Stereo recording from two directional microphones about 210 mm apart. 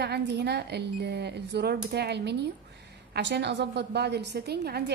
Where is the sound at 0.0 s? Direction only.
50° right (ahead or behind).